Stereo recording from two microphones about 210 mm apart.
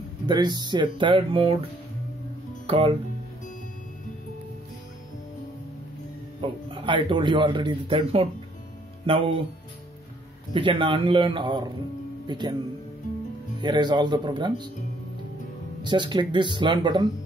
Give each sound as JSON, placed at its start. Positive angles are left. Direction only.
{"t": 0.3, "sound": "speech", "side_deg": -20}
{"t": 2.6, "sound": "speech", "side_deg": -25}
{"t": 6.4, "sound": "speech", "side_deg": -25}
{"t": 10.5, "sound": "speech", "side_deg": -25}
{"t": 13.6, "sound": "speech", "side_deg": -20}
{"t": 15.8, "sound": "speech", "side_deg": -20}